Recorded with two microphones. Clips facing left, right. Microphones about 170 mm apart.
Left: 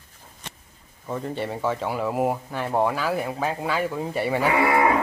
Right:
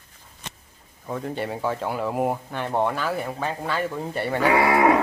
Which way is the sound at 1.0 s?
Centre (ahead or behind).